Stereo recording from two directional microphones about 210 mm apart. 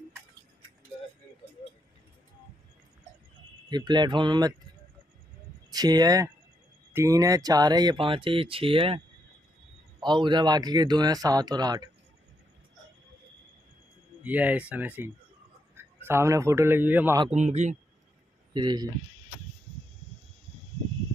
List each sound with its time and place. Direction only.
3.6 s speech: 20° right (ahead or behind)
5.7 s speech: 20° right (ahead or behind)
14.2 s a man's voice: 5° right (ahead or behind)
17.2 s speech: 30° right (ahead or behind)
18.5 s speech: 20° right (ahead or behind)